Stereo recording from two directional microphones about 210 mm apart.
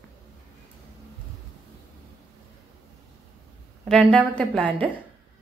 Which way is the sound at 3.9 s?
Centre (ahead or behind).